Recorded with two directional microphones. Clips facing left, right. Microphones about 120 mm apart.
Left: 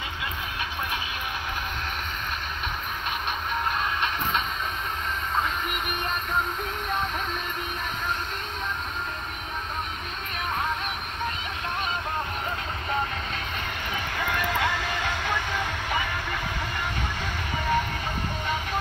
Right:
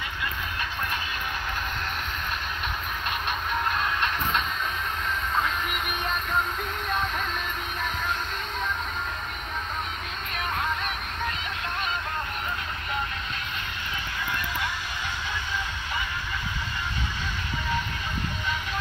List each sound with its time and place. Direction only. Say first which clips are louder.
3.7 s train: even; centre (ahead or behind)
13.9 s music: left 4 dB; 65° left (ahead or behind)